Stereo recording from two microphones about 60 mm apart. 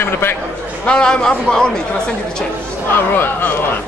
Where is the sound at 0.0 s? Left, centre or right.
Left.